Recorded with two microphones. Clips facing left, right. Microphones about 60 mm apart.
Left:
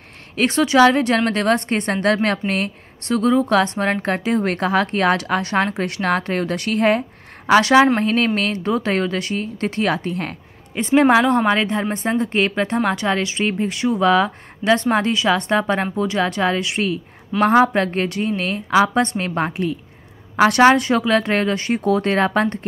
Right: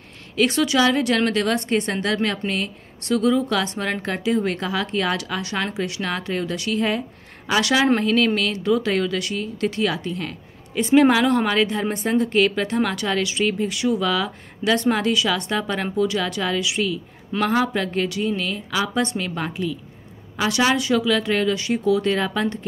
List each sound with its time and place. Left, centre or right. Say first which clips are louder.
0.4 s a woman's voice: left 5 dB; left
7.6 s a woman's voice: left 5 dB; left
10.7 s a woman's voice: left 1 dB; left